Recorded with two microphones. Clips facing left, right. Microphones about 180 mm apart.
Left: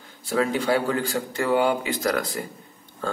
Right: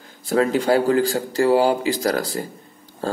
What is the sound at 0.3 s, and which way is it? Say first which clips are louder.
Speech: right 4 dB; 40° right (ahead or behind).